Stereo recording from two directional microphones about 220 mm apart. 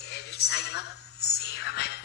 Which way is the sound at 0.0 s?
50° left (ahead or behind).